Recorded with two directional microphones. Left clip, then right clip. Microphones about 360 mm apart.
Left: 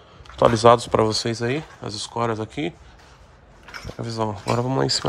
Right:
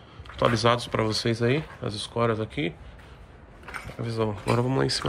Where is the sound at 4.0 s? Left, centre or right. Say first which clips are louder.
Left 3 dB; centre.